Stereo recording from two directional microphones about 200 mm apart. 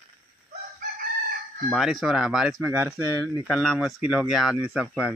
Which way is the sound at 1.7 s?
Centre (ahead or behind).